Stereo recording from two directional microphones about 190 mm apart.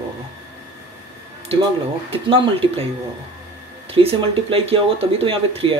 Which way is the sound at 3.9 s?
30° right (ahead or behind).